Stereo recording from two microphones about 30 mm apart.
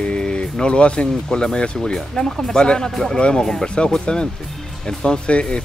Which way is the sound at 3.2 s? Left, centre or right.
Left.